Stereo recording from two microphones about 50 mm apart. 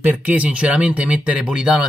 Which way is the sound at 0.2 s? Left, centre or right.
Right.